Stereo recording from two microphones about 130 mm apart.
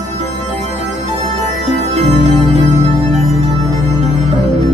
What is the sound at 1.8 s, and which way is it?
Organ, 60° right (ahead or behind).